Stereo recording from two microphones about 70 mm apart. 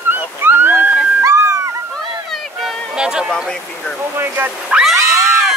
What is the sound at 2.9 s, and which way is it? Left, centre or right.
Music, centre.